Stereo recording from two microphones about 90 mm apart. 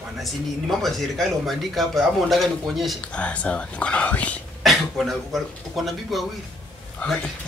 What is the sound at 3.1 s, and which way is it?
Speech, 15° left (ahead or behind).